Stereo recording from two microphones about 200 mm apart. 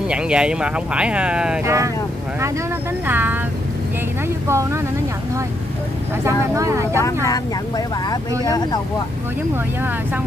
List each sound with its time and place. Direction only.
0.1 s speech: 5° right (ahead or behind)
3.1 s a sound: 10° right (ahead or behind)
4.5 s speech: 15° right (ahead or behind)
6.2 s speech: 15° right (ahead or behind)
7.2 s speech: 20° left (ahead or behind)